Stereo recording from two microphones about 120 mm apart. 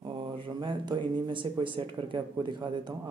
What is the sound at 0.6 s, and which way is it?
Speech, 40° right (ahead or behind).